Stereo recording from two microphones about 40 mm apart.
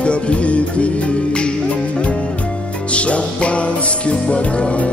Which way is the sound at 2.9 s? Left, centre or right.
Left.